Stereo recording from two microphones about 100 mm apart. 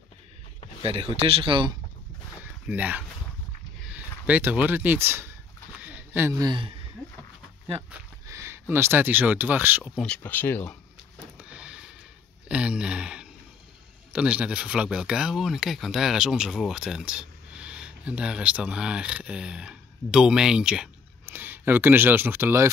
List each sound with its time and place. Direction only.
0.8 s speech: 75° right (ahead or behind); by 1.8 s 55° right (ahead or behind)
2.6 s speech: 15° right (ahead or behind)
5.8 s a sound: 15° right (ahead or behind)
6.3 s speech: 40° right (ahead or behind)
8.3 s speech: 30° right (ahead or behind)
10.0 s speech: 15° left (ahead or behind)
11.3 s a sound: 10° right (ahead or behind)
14.1 s speech: 10° right (ahead or behind)
21.3 s speech: 20° right (ahead or behind)